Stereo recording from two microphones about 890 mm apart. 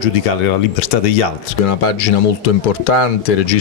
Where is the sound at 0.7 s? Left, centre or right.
Left.